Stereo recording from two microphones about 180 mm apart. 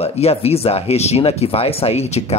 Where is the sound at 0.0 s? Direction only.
35° left (ahead or behind).